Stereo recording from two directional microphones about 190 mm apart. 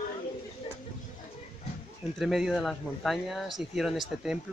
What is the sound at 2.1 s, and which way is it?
Speech, centre (ahead or behind).